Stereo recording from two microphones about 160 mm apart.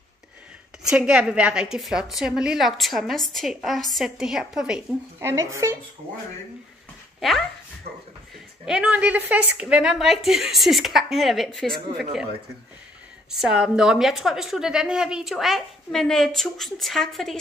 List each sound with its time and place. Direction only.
0.8 s a woman's voice: 5° right (ahead or behind)
5.2 s speech: 20° right (ahead or behind)
7.2 s speech: centre (ahead or behind)
8.6 s a woman's voice: 5° right (ahead or behind)
13.3 s a woman's voice: 5° right (ahead or behind)